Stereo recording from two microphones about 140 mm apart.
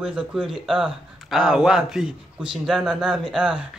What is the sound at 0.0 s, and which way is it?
Speech, 5° right (ahead or behind).